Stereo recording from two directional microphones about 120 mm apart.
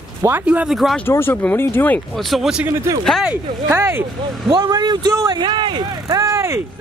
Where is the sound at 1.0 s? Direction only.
20° left (ahead or behind).